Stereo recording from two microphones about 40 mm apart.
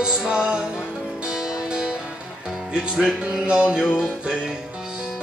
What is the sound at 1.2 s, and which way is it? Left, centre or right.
Music, right.